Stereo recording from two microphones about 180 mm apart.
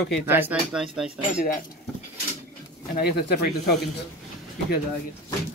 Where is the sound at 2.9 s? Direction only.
60° left (ahead or behind).